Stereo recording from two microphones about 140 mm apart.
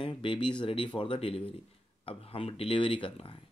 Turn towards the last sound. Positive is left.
turn(degrees=40)  # may be behind; listen again after turning